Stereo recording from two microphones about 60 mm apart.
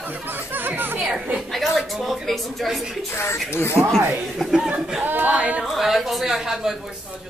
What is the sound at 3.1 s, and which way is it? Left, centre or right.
Speech, left.